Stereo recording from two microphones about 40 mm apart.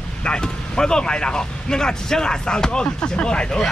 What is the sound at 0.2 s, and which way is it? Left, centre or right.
Speech, centre.